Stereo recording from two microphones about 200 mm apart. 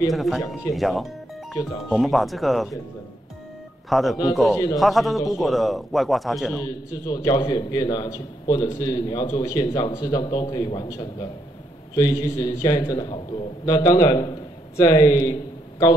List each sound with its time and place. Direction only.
0.1 s speech: centre (ahead or behind)
3.9 s speech: centre (ahead or behind)
6.6 s a man's voice: 20° left (ahead or behind)